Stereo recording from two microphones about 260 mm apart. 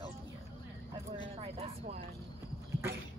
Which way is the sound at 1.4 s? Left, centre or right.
Right.